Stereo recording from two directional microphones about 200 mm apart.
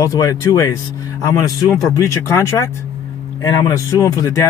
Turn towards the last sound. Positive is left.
turn(degrees=15)  # may be behind; listen again after turning